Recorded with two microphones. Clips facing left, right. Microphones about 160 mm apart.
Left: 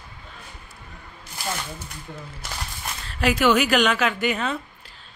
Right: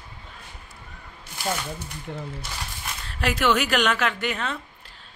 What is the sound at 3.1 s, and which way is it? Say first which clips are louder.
Speech: left 3 dB; centre (ahead or behind).